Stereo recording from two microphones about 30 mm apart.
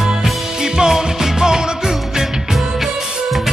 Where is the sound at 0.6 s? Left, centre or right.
Right.